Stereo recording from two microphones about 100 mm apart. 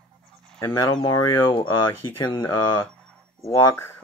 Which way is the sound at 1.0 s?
60° left (ahead or behind).